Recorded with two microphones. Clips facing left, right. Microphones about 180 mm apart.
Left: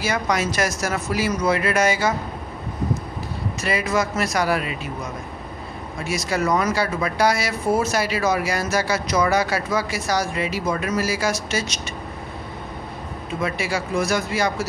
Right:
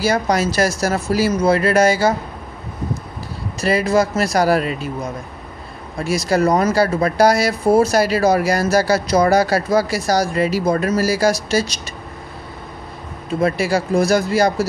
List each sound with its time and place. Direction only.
0.0 s speech: 35° right (ahead or behind)
3.6 s speech: 35° right (ahead or behind)
5.9 s speech: 35° right (ahead or behind)
13.4 s speech: 40° right (ahead or behind)